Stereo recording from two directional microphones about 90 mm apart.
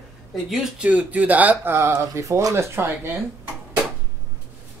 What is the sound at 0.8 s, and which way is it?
Speech, 15° right (ahead or behind).